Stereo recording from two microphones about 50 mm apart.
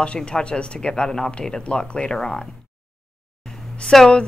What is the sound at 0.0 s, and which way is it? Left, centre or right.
Speech, left.